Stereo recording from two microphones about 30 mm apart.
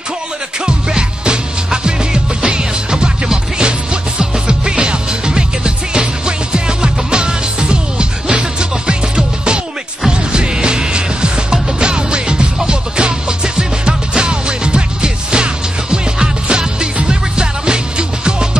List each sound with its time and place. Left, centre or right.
0.7 s music: right